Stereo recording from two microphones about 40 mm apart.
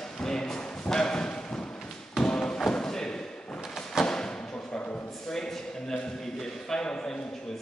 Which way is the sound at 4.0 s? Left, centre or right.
Centre.